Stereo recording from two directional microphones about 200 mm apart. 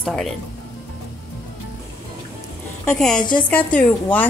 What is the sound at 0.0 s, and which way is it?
Speech, 5° left (ahead or behind).